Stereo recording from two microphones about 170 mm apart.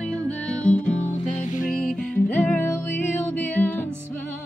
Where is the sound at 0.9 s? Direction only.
45° left (ahead or behind).